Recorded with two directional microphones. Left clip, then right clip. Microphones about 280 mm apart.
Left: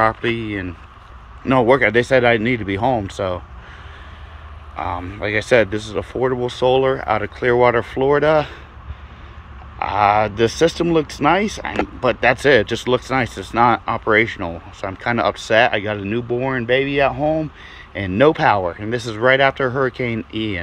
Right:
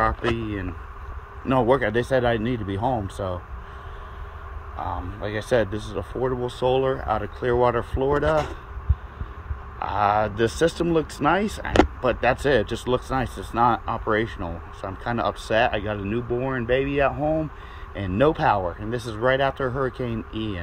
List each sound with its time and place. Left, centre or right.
0.0 s speech: centre
3.2 s speech: left
5.2 s speech: centre
9.8 s speech: centre